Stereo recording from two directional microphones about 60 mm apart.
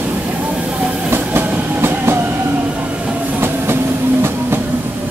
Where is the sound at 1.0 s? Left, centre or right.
Right.